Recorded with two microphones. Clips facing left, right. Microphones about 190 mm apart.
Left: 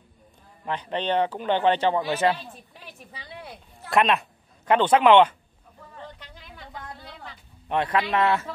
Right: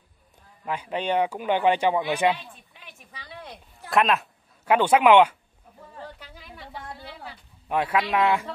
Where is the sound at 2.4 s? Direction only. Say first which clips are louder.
Left 4 dB; 40° left (ahead or behind).